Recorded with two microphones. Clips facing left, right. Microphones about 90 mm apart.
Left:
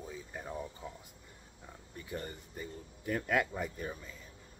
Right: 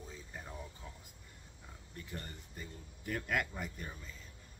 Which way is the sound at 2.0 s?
5° left (ahead or behind).